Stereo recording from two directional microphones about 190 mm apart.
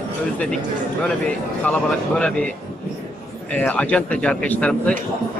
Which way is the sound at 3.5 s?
5° left (ahead or behind).